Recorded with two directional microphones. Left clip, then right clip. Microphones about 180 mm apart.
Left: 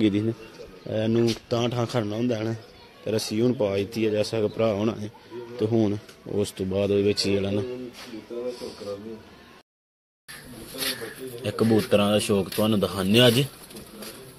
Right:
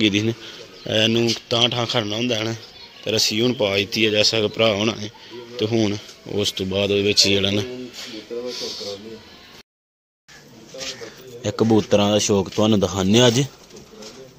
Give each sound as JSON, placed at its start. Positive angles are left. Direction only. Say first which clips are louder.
{"t": 0.0, "sound": "speech", "louder": "right 5 dB", "side_deg": 0}
{"t": 1.5, "sound": "a man's voice", "louder": "right 7 dB", "side_deg": 10}
{"t": 7.3, "sound": "speech", "louder": "right 6 dB", "side_deg": -10}
{"t": 8.5, "sound": "a sound", "louder": "right 4 dB", "side_deg": 0}
{"t": 11.4, "sound": "speech", "louder": "right 4 dB", "side_deg": -35}